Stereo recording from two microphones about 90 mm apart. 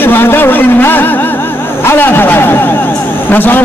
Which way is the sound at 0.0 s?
25° left (ahead or behind).